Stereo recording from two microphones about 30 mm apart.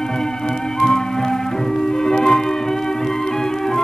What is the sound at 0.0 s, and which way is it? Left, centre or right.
Music, centre.